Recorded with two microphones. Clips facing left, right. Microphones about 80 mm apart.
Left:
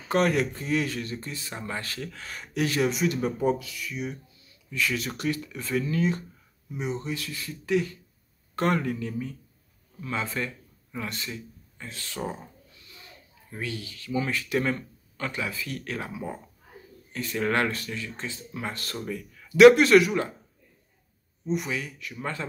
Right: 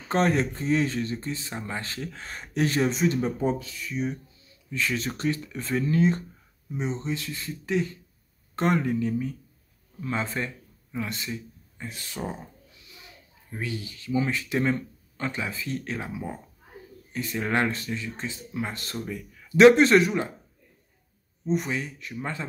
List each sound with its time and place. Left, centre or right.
0.1 s speech: right
10.4 s speech: right
21.5 s speech: right
22.1 s speech: centre